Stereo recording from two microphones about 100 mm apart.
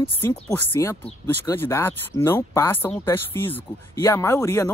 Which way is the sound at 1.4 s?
25° left (ahead or behind).